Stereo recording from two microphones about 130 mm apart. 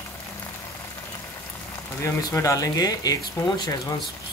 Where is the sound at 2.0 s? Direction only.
25° left (ahead or behind).